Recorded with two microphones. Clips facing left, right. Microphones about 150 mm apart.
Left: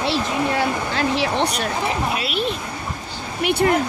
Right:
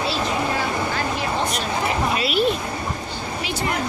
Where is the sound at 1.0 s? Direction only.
80° left.